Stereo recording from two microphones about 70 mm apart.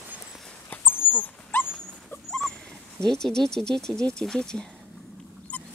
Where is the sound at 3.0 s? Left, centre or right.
Centre.